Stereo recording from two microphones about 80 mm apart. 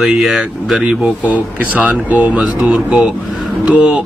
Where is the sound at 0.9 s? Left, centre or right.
Centre.